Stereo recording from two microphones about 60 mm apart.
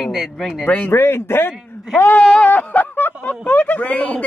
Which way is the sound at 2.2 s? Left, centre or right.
Centre.